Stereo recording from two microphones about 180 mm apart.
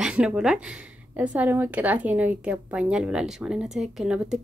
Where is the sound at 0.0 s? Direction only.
5° right (ahead or behind).